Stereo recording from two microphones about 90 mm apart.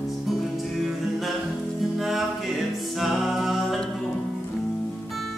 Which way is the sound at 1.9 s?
Centre (ahead or behind).